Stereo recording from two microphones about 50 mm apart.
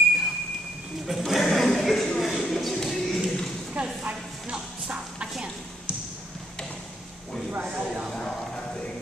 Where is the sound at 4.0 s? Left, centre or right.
Right.